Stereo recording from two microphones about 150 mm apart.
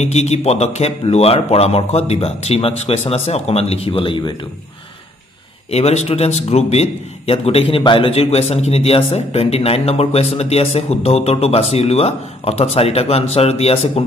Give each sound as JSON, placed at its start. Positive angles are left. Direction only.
{"t": 0.0, "sound": "a man's voice", "side_deg": 45}
{"t": 5.7, "sound": "a man's voice", "side_deg": 45}